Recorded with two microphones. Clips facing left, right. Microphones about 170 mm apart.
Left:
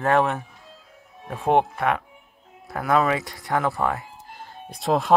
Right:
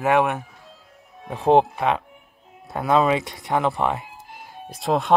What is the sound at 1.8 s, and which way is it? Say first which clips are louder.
Speech: right 1 dB; 25° right (ahead or behind).